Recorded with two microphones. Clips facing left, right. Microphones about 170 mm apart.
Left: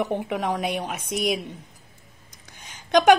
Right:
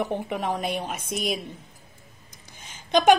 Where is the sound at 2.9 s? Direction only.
15° left (ahead or behind).